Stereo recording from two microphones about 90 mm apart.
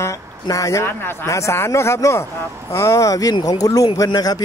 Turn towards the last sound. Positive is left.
turn(degrees=45)  # may be behind; listen again after turning